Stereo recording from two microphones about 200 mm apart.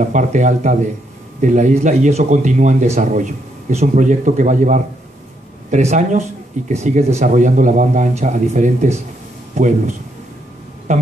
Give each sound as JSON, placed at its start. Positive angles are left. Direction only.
{"t": 0.0, "sound": "speech", "side_deg": -40}